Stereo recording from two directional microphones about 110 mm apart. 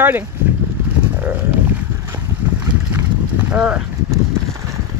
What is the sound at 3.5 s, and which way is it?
Speech, 10° right (ahead or behind).